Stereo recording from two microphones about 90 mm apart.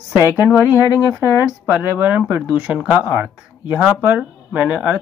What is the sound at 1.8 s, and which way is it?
Speech, 15° right (ahead or behind).